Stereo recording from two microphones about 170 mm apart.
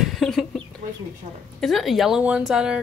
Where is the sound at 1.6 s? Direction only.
Centre (ahead or behind).